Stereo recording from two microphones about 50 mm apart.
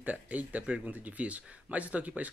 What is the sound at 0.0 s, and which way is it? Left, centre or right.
Speech, right.